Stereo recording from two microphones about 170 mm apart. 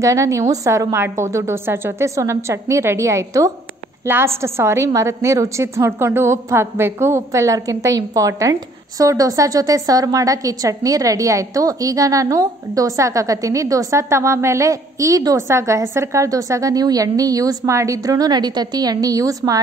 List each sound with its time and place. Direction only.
0.0 s a woman's voice: 20° right (ahead or behind)